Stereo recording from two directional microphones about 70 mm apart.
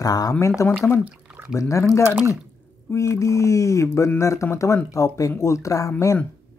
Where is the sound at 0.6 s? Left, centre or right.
Left.